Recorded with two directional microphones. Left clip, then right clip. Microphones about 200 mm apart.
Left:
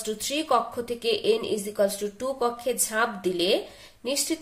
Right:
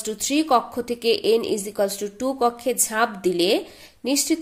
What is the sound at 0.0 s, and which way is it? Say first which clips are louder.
A woman's voice: right 5 dB; 30° right (ahead or behind).